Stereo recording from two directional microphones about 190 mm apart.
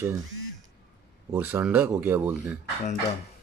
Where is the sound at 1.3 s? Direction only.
10° right (ahead or behind).